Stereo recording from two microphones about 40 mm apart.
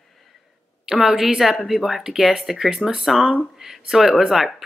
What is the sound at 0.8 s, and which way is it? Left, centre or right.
A woman's voice, centre.